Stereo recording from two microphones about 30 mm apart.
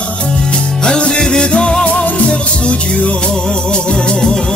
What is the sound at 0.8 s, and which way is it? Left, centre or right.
Music, left.